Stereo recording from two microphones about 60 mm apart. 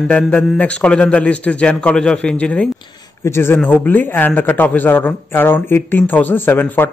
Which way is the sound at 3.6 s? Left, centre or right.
Left.